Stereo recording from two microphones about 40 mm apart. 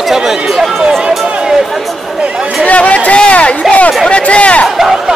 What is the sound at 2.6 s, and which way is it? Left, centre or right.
A man's voice, left.